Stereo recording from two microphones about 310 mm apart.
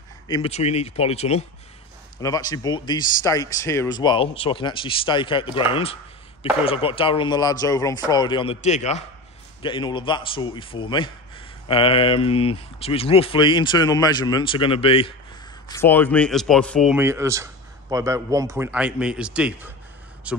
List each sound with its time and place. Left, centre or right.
0.3 s a man's voice: centre
15.7 s speech: centre